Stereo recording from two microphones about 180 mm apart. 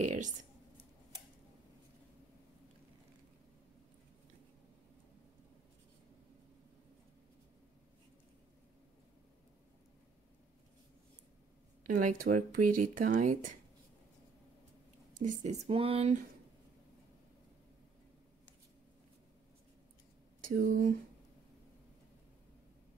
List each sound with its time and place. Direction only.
0.0 s speech: 40° right (ahead or behind)
11.8 s speech: 45° right (ahead or behind)
15.1 s speech: 45° right (ahead or behind)
15.6 s speech: 30° right (ahead or behind)
20.4 s speech: 55° right (ahead or behind)